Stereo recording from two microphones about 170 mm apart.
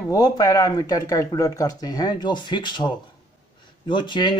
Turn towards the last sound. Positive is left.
turn(degrees=25)  # may be behind; listen again after turning